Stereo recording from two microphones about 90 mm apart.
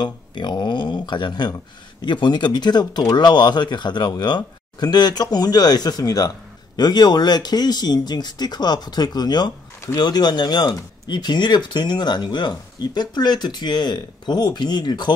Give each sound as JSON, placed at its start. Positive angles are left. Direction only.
{"t": 0.0, "sound": "speech", "side_deg": 55}